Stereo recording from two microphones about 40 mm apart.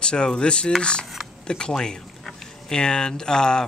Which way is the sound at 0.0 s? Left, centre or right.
Left.